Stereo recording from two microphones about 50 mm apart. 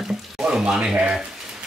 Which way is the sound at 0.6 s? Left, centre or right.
Centre.